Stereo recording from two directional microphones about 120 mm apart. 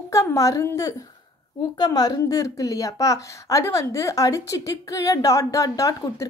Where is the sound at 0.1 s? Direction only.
25° left (ahead or behind).